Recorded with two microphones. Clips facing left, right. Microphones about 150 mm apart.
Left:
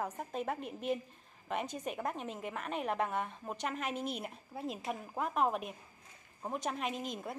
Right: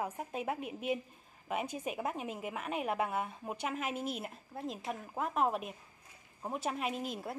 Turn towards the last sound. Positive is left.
turn(degrees=-5)  # may be behind; listen again after turning